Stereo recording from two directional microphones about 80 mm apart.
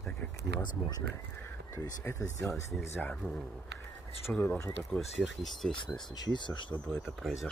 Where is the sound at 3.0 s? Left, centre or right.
Centre.